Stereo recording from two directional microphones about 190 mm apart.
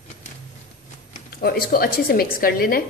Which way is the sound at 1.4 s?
55° left (ahead or behind).